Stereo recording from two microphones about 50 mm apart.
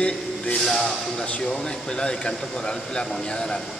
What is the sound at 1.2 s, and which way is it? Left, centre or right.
A man's voice, left.